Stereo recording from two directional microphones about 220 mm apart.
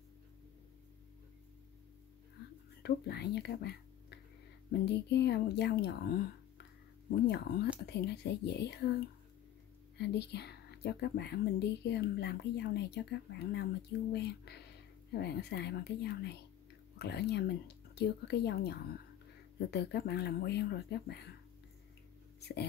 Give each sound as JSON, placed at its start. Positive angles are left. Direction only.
{"t": 2.8, "sound": "speech", "side_deg": 50}
{"t": 7.2, "sound": "speech", "side_deg": 45}
{"t": 9.9, "sound": "speech", "side_deg": 50}
{"t": 22.4, "sound": "speech", "side_deg": 50}